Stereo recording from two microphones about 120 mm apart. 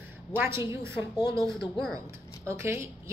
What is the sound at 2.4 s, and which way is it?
Speech, 25° right (ahead or behind).